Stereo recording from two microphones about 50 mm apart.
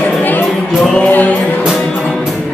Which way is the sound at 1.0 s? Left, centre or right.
Left.